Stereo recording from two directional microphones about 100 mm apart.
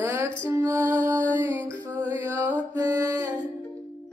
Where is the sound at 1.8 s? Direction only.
20° right (ahead or behind).